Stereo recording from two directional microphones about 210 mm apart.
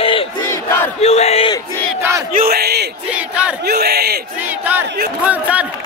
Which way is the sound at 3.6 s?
50° right (ahead or behind).